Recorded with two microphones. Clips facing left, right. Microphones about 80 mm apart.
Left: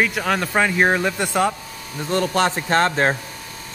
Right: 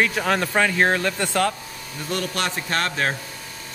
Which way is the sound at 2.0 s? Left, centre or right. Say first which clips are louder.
Left 7 dB; left.